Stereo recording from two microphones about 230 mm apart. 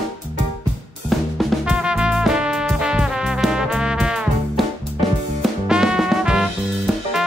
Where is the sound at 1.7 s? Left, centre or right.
Centre.